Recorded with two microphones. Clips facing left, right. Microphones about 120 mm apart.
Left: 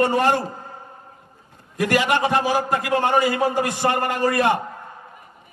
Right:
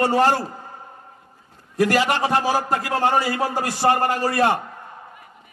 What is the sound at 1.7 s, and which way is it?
A man's voice, 35° right (ahead or behind).